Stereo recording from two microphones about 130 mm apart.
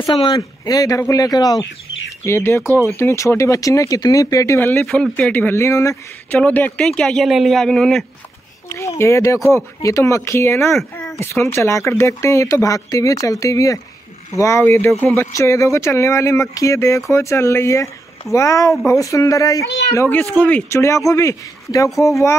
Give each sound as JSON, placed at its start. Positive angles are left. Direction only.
{"t": 0.0, "sound": "speech", "side_deg": 40}
{"t": 2.2, "sound": "speech", "side_deg": 20}
{"t": 4.7, "sound": "a man's voice", "side_deg": 5}
{"t": 5.3, "sound": "speech", "side_deg": 15}
{"t": 6.4, "sound": "a man's voice", "side_deg": 10}
{"t": 8.6, "sound": "speech", "side_deg": 20}
{"t": 20.3, "sound": "speech", "side_deg": 10}
{"t": 20.7, "sound": "speech", "side_deg": 20}